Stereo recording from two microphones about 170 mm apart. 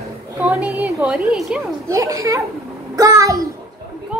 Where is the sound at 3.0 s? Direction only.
20° right (ahead or behind).